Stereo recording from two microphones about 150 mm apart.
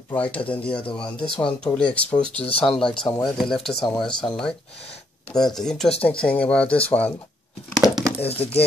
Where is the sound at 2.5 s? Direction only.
40° left (ahead or behind).